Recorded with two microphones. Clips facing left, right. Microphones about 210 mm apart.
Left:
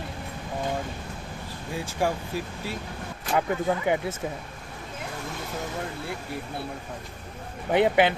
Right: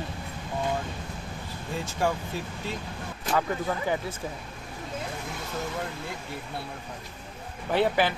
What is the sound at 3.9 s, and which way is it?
Speech, 20° left (ahead or behind).